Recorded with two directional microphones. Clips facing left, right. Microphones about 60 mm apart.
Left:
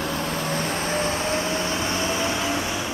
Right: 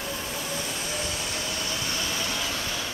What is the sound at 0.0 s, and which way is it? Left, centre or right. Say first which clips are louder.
Vehicle: left 7 dB; left.